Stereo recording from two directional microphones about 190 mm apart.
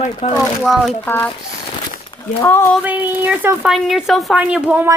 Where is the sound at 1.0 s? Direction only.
10° left (ahead or behind).